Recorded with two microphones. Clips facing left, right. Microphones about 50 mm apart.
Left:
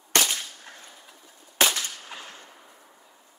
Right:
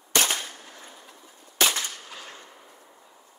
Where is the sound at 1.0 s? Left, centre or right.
Centre.